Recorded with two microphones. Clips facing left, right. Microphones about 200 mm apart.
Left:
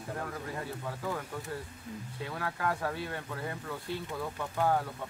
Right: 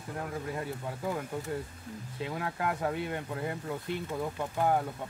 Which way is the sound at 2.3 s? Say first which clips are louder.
Even; 20° right (ahead or behind).